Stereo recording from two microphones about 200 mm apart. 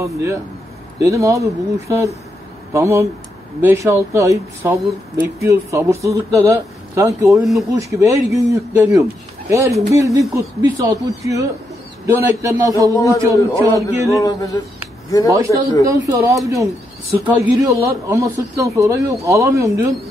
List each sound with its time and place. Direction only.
0.0 s speech: 15° right (ahead or behind)
7.3 s speech: centre (ahead or behind)
7.9 s speech: 15° right (ahead or behind)
12.9 s speech: 15° left (ahead or behind)
13.2 s speech: 15° right (ahead or behind)
14.0 s speech: 15° left (ahead or behind)
15.8 s speech: 15° right (ahead or behind)